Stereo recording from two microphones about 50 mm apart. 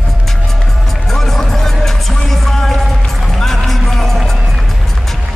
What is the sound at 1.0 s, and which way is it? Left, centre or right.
Music, centre.